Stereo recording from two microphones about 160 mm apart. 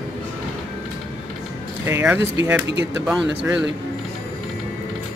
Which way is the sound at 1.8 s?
15° right (ahead or behind).